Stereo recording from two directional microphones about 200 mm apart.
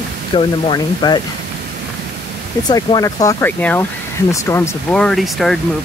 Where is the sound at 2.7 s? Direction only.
20° left (ahead or behind); by 5.6 s centre (ahead or behind).